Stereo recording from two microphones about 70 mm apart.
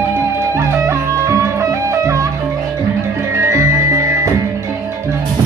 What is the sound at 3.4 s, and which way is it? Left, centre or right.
Music, right.